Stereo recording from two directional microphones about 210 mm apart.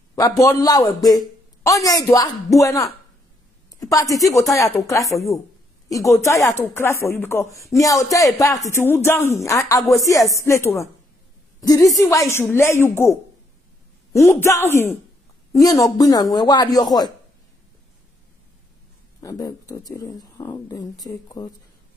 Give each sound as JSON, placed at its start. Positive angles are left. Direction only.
{"t": 0.1, "sound": "speech", "side_deg": 15}
{"t": 5.1, "sound": "a woman's voice", "side_deg": 0}
{"t": 5.9, "sound": "a woman's voice", "side_deg": 15}
{"t": 19.2, "sound": "speech", "side_deg": 15}